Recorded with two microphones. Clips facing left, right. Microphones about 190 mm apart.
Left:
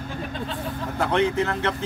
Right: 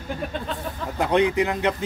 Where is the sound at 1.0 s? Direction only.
15° right (ahead or behind).